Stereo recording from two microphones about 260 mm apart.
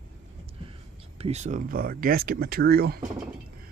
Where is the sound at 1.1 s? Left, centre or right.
Right.